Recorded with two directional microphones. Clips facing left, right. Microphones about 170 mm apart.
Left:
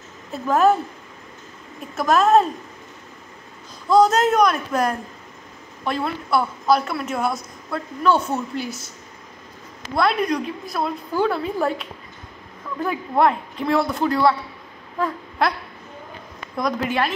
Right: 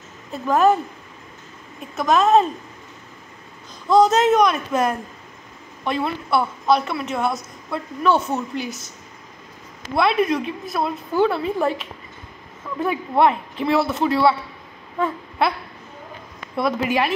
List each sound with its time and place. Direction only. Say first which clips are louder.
0.3 s a woman's voice: even; centre (ahead or behind)
2.0 s a woman's voice: even; centre (ahead or behind)
3.9 s a woman's voice: right 1 dB; centre (ahead or behind)
8.4 s a woman's voice: even; 20° right (ahead or behind)
9.9 s a woman's voice: right 2 dB; 5° right (ahead or behind)
15.0 s a sound: right 1 dB; 5° right (ahead or behind)
16.5 s a woman's voice: right 2 dB; 5° right (ahead or behind)